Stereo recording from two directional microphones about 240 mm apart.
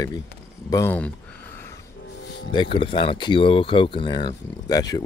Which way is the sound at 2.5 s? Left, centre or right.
Centre.